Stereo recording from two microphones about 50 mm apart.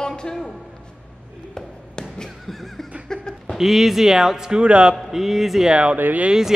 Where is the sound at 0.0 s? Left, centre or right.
Centre.